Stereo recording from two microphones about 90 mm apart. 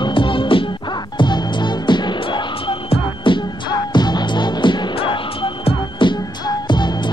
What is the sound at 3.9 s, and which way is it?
Music, 50° left (ahead or behind).